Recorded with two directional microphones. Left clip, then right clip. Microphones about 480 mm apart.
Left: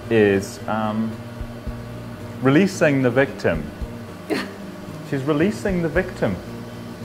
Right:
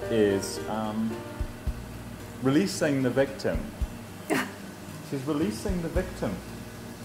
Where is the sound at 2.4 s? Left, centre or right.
Left.